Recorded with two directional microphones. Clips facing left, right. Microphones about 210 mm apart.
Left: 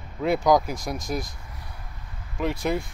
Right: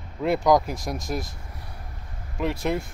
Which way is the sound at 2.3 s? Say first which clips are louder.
Even; centre (ahead or behind).